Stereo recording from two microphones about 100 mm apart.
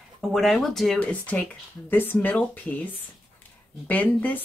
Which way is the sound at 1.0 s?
15° left (ahead or behind).